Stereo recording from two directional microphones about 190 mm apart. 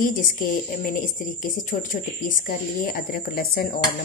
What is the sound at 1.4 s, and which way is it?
Speech, 45° left (ahead or behind).